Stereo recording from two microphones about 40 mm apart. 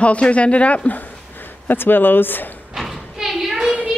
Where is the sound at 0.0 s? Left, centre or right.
Left.